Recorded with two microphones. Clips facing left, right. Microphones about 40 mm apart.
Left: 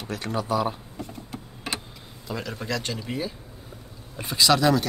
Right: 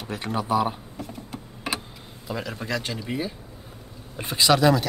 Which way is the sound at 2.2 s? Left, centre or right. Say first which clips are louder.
Right 1 dB; centre.